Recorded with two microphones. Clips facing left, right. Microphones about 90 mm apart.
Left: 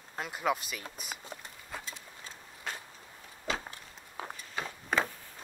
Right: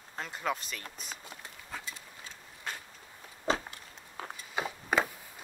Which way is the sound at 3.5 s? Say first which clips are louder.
Right 5 dB; 35° right (ahead or behind).